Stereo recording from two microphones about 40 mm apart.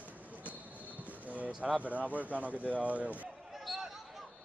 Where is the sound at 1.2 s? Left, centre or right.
Right.